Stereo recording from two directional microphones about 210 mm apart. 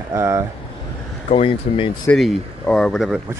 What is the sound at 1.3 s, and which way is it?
Speech, 25° left (ahead or behind).